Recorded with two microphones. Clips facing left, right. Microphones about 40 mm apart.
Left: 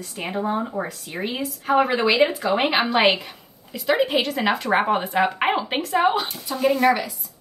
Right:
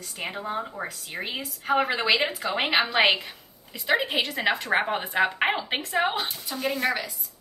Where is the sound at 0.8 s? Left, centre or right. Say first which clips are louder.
Left 5 dB; centre.